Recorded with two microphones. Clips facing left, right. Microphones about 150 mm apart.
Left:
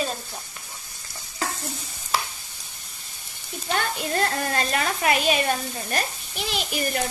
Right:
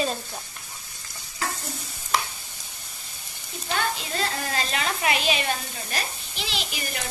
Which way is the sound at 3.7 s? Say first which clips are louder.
Left 3 dB; 55° left (ahead or behind).